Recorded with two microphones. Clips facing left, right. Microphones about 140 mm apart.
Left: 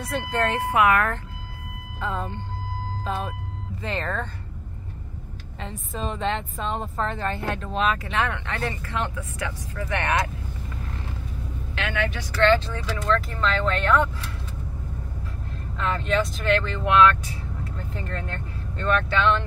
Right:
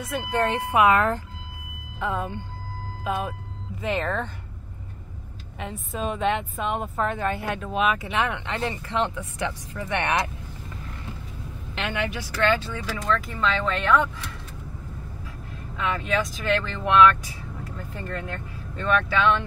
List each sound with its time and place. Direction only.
0.3 s speech: 15° right (ahead or behind)
2.0 s a woman's voice: 10° right (ahead or behind)
5.6 s a woman's voice: 10° right (ahead or behind)
11.9 s speech: 10° right (ahead or behind)
15.8 s speech: centre (ahead or behind)